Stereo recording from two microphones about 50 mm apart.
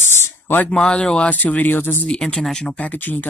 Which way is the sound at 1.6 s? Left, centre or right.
Left.